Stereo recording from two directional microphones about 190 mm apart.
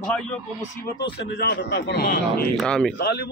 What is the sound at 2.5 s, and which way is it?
Speech, 5° left (ahead or behind).